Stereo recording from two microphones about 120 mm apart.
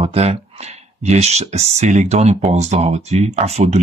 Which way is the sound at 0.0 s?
60° right (ahead or behind).